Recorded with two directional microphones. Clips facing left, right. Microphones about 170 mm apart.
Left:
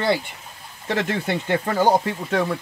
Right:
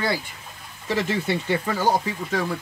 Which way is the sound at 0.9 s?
55° left (ahead or behind).